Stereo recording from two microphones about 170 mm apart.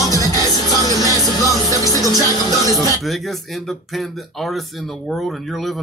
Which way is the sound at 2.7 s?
20° right (ahead or behind).